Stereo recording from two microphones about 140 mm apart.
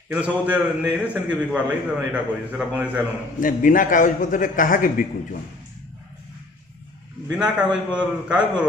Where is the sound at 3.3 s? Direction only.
75° left (ahead or behind).